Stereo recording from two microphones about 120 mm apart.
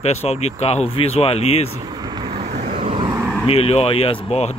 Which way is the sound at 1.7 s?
35° right (ahead or behind).